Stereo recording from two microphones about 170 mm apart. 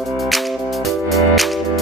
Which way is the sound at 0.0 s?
Centre (ahead or behind).